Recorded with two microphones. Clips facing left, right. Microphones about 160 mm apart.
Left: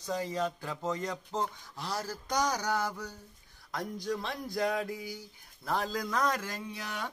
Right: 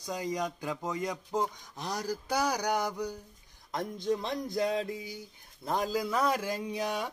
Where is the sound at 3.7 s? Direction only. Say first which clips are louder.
Right 3 dB; 20° right (ahead or behind).